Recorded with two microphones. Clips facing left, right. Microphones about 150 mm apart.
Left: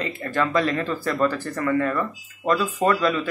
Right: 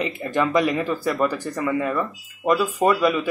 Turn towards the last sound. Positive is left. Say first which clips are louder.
# right 2 dB
turn(degrees=-10)  # may be behind; listen again after turning